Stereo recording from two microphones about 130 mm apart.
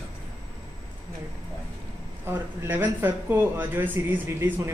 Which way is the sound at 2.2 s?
15° right (ahead or behind).